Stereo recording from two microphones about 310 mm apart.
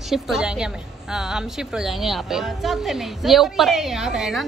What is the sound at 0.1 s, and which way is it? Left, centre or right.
Speech, centre.